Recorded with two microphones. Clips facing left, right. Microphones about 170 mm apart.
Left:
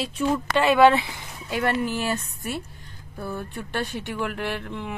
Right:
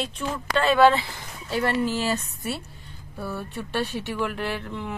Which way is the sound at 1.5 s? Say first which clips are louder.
Even; 15° left (ahead or behind).